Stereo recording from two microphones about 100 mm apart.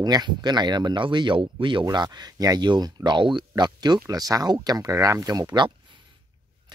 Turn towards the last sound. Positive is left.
turn(degrees=-45)  # may be behind; listen again after turning